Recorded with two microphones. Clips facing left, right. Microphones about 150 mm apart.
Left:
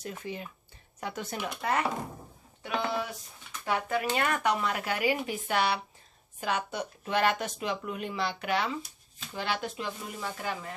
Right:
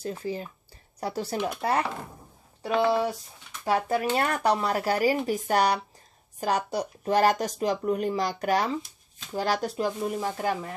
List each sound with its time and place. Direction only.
0.0 s speech: 35° right (ahead or behind)